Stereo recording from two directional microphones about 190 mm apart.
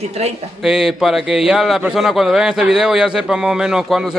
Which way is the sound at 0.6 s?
Centre (ahead or behind).